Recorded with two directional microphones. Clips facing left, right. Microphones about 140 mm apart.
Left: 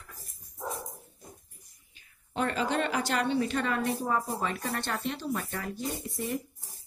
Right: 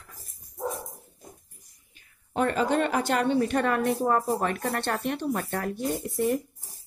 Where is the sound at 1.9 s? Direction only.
45° right (ahead or behind).